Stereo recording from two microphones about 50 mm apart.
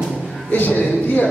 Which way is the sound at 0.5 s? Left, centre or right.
Left.